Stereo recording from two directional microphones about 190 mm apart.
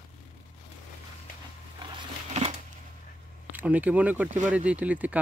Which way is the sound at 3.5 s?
10° right (ahead or behind).